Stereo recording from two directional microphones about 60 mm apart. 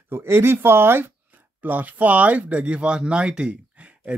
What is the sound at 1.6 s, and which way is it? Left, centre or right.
Speech, right.